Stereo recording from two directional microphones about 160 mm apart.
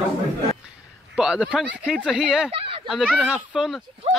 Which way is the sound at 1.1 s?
5° right (ahead or behind).